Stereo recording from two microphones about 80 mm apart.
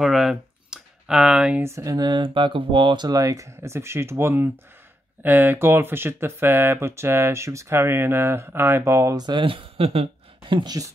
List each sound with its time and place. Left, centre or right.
0.0 s a sound: centre
1.6 s speech: right
2.0 s speech: right
3.1 s speech: right
9.1 s speech: right
10.5 s speech: right